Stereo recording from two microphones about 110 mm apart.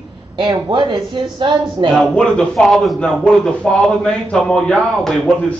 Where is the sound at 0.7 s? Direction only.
45° right (ahead or behind).